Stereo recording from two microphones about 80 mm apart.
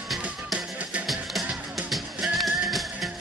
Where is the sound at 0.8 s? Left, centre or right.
Centre.